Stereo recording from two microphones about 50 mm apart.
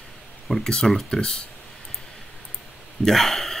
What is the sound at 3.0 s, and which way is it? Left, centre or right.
Speech, centre.